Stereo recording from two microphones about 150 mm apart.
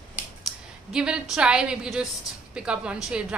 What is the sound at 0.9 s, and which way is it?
A woman's voice, 5° right (ahead or behind).